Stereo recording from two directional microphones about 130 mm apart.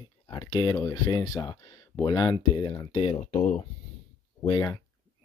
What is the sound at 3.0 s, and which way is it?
Speech, 65° left (ahead or behind).